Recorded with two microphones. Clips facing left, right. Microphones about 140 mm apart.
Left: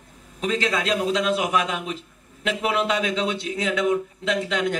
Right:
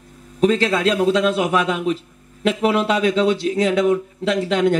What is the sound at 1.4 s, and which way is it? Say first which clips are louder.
A man's voice: right 5 dB; 35° right (ahead or behind).